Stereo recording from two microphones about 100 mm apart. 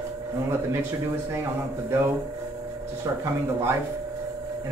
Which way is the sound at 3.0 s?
30° right (ahead or behind).